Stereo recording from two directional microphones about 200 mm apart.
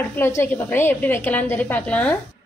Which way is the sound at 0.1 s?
10° left (ahead or behind).